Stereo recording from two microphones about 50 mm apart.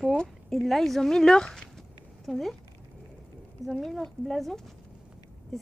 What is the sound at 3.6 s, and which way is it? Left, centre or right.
Speech, left.